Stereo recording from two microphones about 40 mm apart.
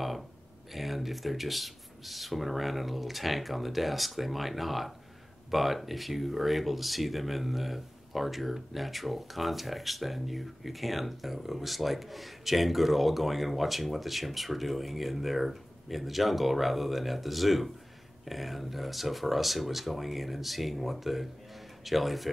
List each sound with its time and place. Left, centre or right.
0.7 s speech: centre